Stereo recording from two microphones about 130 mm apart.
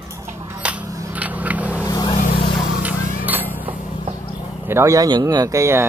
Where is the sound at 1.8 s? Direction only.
30° left (ahead or behind).